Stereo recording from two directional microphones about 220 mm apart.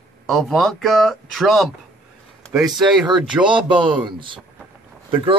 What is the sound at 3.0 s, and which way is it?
Speech, 20° right (ahead or behind).